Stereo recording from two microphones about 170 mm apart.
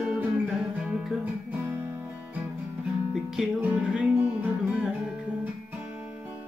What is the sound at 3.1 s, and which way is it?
Music, centre (ahead or behind).